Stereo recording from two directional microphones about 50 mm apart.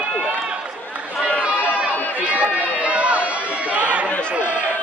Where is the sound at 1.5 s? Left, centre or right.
Left.